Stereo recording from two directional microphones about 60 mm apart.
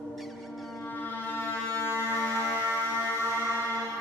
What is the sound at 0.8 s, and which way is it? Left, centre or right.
Foghorn, left.